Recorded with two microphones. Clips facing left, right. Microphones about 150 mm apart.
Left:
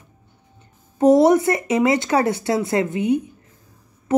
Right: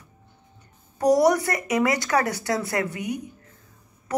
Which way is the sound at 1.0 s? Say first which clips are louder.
Left 5 dB; 25° left (ahead or behind).